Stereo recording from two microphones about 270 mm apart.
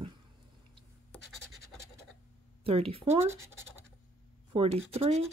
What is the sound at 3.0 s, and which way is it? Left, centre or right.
Speech, centre.